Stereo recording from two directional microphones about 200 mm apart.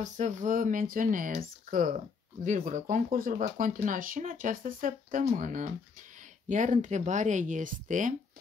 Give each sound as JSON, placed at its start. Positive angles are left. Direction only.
{"t": 0.0, "sound": "speech", "side_deg": -40}